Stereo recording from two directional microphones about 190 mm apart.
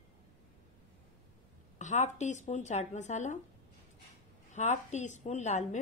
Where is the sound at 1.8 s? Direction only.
40° left (ahead or behind).